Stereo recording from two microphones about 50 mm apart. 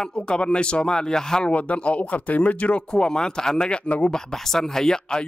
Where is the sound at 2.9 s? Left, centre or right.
Centre.